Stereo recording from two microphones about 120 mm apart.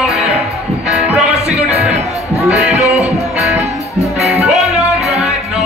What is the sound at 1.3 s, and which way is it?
Music, 65° right (ahead or behind).